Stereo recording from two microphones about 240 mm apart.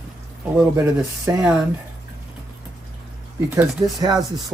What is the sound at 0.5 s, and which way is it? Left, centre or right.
Speech, centre.